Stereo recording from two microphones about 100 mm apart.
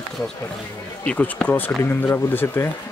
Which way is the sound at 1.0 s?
15° left (ahead or behind).